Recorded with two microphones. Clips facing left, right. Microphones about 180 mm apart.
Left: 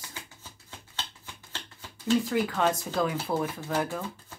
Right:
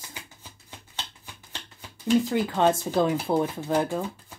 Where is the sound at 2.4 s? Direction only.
30° right (ahead or behind).